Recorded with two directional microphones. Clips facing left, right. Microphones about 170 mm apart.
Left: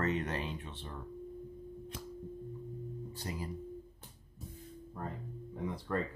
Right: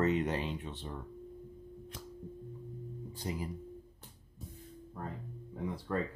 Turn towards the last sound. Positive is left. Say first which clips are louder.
# even
turn(degrees=-5)  # may be behind; listen again after turning